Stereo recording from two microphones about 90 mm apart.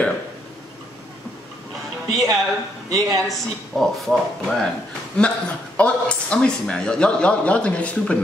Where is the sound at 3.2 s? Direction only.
5° left (ahead or behind).